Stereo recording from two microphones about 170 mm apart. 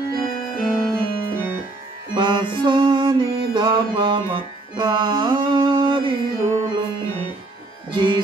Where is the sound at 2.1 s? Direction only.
25° right (ahead or behind).